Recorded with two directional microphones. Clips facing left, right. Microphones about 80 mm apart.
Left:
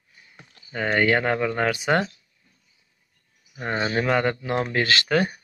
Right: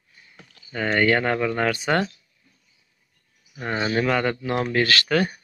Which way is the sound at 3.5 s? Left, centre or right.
Left.